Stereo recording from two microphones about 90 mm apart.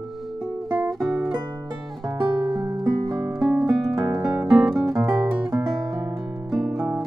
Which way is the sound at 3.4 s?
5° right (ahead or behind).